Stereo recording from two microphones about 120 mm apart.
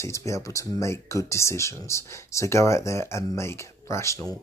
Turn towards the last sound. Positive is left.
turn(degrees=25)  # may be behind; listen again after turning